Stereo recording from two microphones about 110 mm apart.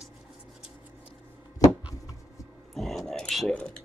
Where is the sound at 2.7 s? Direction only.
5° left (ahead or behind).